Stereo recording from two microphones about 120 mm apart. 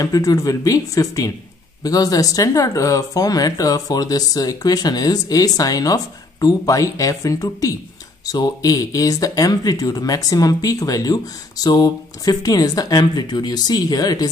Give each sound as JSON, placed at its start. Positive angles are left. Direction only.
{"t": 0.0, "sound": "speech", "side_deg": 30}